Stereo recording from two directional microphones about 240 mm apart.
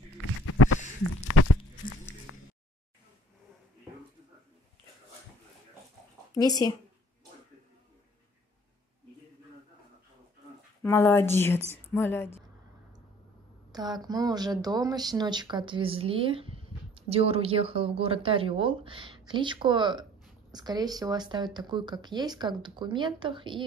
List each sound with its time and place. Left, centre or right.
0.5 s a sound: left
6.3 s speech: centre
10.8 s speech: centre
13.7 s speech: centre